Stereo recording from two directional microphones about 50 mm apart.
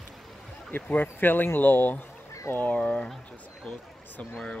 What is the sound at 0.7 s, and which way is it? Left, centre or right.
Speech, left.